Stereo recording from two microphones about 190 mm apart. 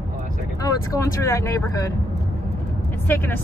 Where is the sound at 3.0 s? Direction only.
10° left (ahead or behind).